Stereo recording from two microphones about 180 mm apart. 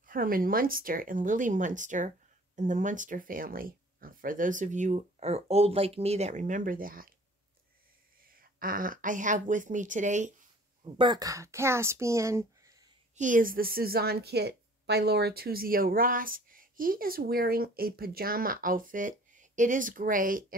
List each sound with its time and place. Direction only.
0.0 s a woman's voice: 50° right (ahead or behind)
8.3 s a woman's voice: 50° right (ahead or behind)
10.8 s speech: 25° right (ahead or behind)
13.1 s a woman's voice: 45° right (ahead or behind)